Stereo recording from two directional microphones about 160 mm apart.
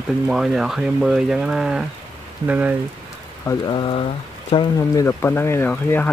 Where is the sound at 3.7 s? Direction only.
30° left (ahead or behind).